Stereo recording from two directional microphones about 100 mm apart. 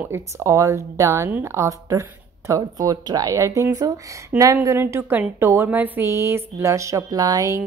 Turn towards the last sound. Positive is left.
turn(degrees=-35)  # may be behind; listen again after turning